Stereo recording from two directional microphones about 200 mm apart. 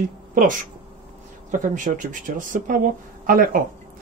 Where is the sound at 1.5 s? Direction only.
40° right (ahead or behind).